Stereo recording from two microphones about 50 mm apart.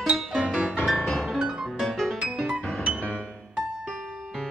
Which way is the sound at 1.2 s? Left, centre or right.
Centre.